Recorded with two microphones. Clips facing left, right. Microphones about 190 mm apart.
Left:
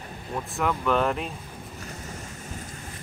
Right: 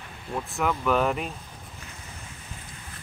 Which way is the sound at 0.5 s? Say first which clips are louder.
Even; centre (ahead or behind).